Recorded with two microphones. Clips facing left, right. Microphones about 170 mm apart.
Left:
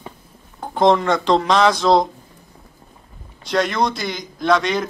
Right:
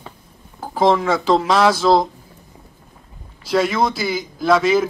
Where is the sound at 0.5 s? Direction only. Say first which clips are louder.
Left 1 dB; 5° right (ahead or behind).